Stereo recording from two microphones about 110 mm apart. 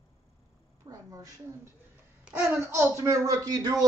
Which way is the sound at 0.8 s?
30° right (ahead or behind).